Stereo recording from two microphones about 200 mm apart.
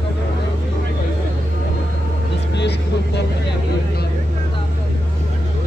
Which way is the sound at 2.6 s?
60° left (ahead or behind).